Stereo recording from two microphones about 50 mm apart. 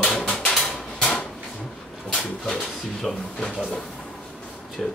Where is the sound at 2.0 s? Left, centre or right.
Centre.